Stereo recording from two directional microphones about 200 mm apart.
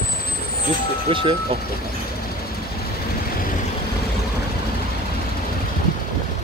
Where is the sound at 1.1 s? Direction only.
25° right (ahead or behind).